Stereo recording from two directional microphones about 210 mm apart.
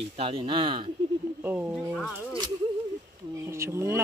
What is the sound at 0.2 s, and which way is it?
Speech, 25° right (ahead or behind).